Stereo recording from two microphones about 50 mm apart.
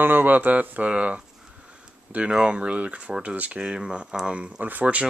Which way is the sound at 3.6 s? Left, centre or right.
Centre.